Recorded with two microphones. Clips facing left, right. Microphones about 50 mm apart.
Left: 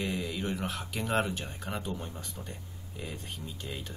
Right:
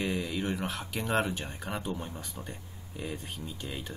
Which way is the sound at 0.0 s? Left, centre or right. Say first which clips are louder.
Right 2 dB; centre.